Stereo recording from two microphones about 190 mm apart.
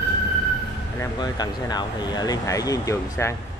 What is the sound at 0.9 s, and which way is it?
Speech, 20° left (ahead or behind).